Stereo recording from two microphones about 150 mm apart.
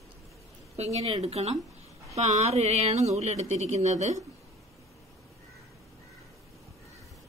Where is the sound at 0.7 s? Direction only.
45° right (ahead or behind).